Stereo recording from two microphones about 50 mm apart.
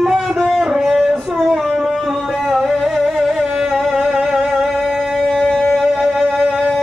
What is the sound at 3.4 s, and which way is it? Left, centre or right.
Carnatic music, centre.